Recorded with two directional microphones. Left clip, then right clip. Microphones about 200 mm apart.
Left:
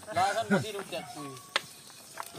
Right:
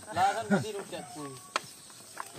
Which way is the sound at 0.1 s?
25° left (ahead or behind).